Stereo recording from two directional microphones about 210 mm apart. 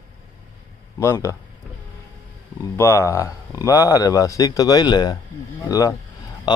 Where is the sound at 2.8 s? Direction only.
15° left (ahead or behind).